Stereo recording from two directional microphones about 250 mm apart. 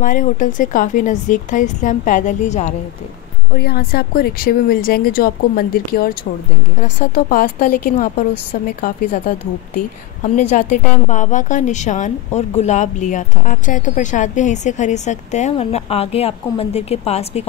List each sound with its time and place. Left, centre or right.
0.0 s a woman's voice: left
3.5 s a woman's voice: left
7.2 s a woman's voice: left
9.8 s a woman's voice: left